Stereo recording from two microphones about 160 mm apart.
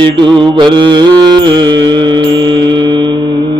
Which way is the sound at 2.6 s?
30° right (ahead or behind).